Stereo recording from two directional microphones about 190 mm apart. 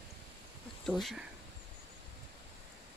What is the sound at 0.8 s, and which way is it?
Speech, centre (ahead or behind).